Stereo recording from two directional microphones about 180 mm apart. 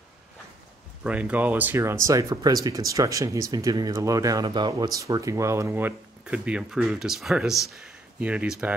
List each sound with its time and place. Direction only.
1.0 s speech: 5° right (ahead or behind)